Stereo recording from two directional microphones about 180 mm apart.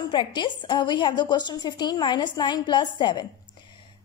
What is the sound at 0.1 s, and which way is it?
A woman's voice, 25° left (ahead or behind).